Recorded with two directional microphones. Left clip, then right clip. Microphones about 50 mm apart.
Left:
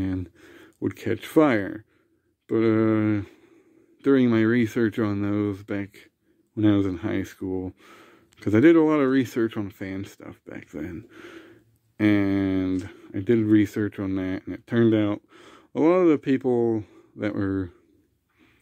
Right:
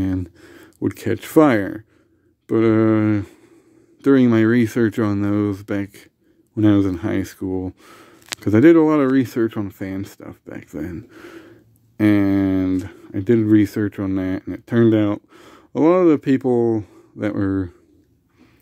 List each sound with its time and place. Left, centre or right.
0.0 s speech: centre
2.4 s speech: centre